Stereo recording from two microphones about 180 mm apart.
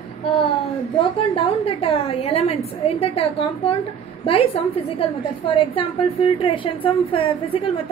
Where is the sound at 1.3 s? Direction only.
30° left (ahead or behind).